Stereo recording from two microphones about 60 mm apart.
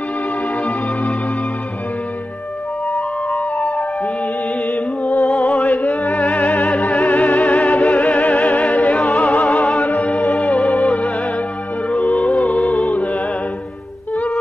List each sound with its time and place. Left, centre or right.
2.9 s music: left